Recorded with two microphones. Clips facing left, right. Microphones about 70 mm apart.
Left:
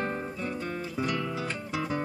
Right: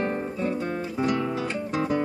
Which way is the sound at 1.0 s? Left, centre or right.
Right.